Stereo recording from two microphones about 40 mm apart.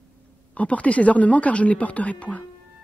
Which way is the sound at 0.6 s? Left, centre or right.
Left.